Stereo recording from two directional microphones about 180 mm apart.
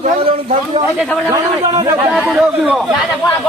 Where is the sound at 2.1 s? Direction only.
Centre (ahead or behind).